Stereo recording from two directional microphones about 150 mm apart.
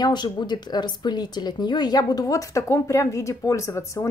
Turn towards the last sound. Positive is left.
turn(degrees=20)  # may be behind; listen again after turning